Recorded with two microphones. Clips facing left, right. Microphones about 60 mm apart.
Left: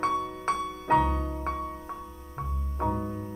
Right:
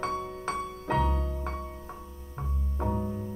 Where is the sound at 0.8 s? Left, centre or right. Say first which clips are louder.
Left 5 dB; left.